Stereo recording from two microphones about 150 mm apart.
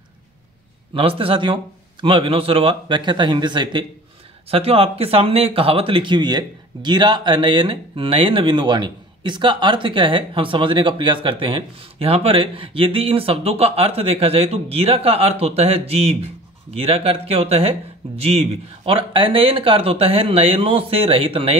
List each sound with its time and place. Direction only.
0.9 s speech: 35° right (ahead or behind)
4.5 s speech: 40° right (ahead or behind)